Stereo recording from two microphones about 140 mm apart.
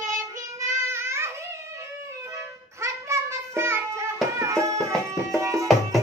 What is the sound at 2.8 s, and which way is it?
Music, 20° right (ahead or behind).